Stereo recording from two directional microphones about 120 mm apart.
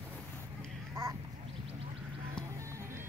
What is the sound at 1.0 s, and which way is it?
Duck, 30° right (ahead or behind).